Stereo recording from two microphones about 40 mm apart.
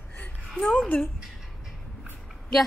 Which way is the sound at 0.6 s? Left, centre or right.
Centre.